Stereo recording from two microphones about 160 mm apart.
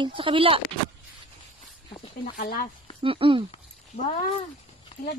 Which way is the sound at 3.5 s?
45° left (ahead or behind).